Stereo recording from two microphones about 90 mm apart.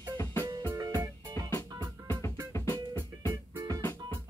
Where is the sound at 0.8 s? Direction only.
45° right (ahead or behind).